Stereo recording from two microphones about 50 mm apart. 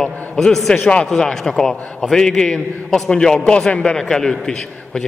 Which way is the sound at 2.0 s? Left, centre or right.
Centre.